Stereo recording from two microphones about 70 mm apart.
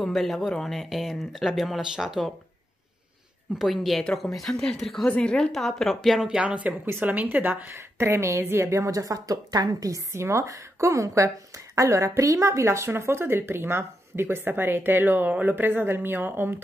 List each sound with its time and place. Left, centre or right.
0.0 s speech: centre
3.5 s speech: centre
5.0 s speech: centre
5.5 s speech: centre
6.4 s a woman's voice: centre